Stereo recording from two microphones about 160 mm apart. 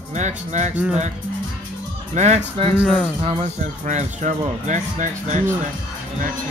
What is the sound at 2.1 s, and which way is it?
Speech, 45° right (ahead or behind).